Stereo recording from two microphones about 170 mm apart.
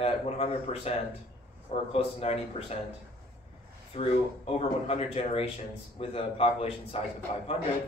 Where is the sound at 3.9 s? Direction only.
35° left (ahead or behind).